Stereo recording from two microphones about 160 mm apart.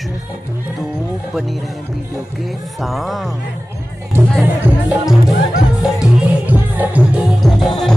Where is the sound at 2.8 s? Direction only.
Centre (ahead or behind).